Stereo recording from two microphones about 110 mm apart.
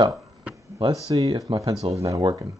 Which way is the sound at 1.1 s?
45° right (ahead or behind).